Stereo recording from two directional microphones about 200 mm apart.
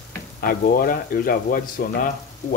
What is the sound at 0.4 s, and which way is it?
Speech, 45° left (ahead or behind).